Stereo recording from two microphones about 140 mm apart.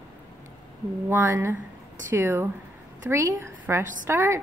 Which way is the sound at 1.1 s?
20° right (ahead or behind).